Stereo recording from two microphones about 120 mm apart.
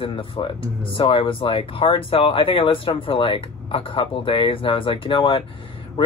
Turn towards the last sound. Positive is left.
turn(degrees=45)  # may be behind; listen again after turning